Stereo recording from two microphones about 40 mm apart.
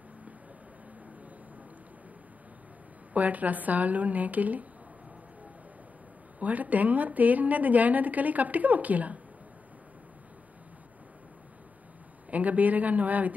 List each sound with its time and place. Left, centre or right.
3.1 s a woman's voice: right
6.4 s a woman's voice: right
12.3 s a man's voice: right